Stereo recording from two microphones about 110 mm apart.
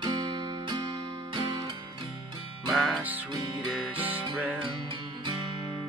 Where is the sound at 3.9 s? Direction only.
15° right (ahead or behind).